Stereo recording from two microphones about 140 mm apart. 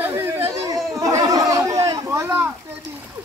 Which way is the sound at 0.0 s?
20° right (ahead or behind).